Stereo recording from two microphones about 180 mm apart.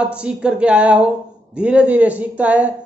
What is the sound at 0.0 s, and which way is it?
Speech, 5° right (ahead or behind).